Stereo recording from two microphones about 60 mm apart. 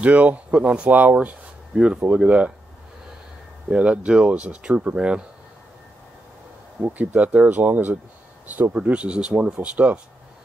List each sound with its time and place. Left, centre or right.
0.0 s speech: right
3.7 s speech: centre
6.8 s speech: right